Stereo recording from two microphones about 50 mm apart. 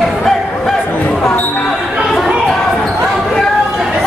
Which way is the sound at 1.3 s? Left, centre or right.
Left.